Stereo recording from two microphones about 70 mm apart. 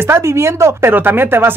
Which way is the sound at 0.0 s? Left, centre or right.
Right.